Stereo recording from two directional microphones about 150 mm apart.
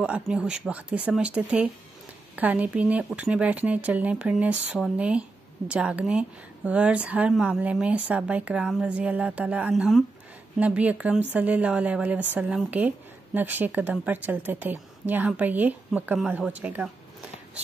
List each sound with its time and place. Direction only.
0.0 s speech: 5° right (ahead or behind)